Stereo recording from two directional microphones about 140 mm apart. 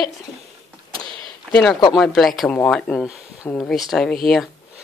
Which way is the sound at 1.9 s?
Centre (ahead or behind).